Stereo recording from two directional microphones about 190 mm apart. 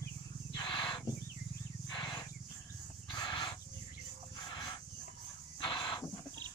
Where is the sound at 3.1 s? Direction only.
25° left (ahead or behind).